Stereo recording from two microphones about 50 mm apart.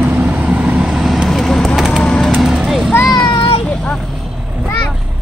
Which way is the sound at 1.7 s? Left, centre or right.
Centre.